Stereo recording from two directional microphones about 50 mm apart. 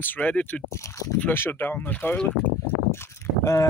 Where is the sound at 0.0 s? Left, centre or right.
Left.